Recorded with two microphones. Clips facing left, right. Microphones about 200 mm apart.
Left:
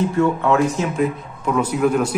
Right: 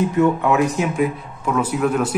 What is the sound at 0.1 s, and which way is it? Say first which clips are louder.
Speech: right 1 dB; 15° right (ahead or behind).